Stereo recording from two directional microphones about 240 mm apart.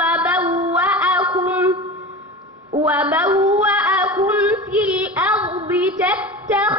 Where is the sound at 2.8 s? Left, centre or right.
Centre.